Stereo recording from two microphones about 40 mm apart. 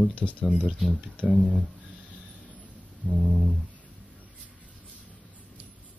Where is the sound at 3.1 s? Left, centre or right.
Centre.